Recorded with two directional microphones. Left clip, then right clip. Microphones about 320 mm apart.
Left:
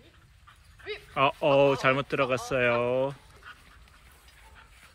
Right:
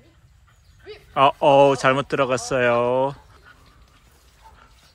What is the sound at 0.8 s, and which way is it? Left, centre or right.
Speech, centre.